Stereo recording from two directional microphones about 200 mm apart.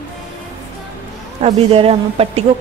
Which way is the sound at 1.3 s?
30° right (ahead or behind).